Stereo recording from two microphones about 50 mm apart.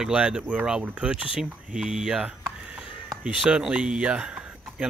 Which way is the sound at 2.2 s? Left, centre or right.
Right.